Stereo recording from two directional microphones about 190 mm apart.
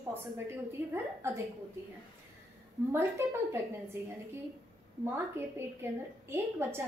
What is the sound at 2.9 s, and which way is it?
Speech, 15° right (ahead or behind).